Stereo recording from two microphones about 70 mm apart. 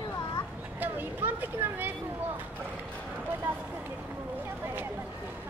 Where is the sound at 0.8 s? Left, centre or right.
Right.